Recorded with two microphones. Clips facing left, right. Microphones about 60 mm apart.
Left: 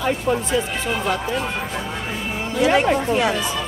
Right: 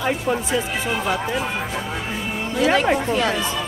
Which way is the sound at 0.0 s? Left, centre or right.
Centre.